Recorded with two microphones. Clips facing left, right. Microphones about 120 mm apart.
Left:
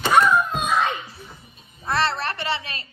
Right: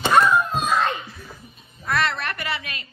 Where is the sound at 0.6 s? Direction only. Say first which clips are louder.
Even; centre (ahead or behind).